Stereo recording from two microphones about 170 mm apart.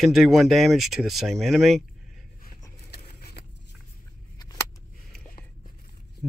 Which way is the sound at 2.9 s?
70° left (ahead or behind).